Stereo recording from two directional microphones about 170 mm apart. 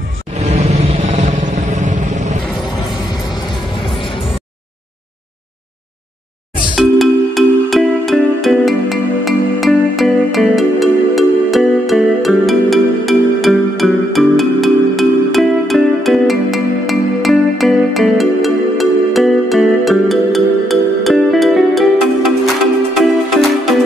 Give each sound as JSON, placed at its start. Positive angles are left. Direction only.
{"t": 0.4, "sound": "vehicle", "side_deg": -40}
{"t": 6.7, "sound": "music", "side_deg": 0}